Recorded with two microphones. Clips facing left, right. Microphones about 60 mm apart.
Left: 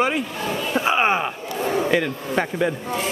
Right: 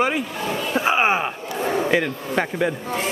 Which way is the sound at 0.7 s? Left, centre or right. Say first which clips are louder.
Even; centre.